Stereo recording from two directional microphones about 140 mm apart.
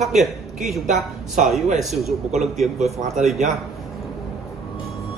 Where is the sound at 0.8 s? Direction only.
60° right (ahead or behind).